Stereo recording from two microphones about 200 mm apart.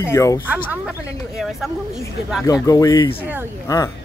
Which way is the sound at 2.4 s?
15° left (ahead or behind).